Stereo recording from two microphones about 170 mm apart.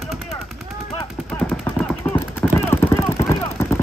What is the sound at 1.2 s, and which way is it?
Machine gun, 5° left (ahead or behind).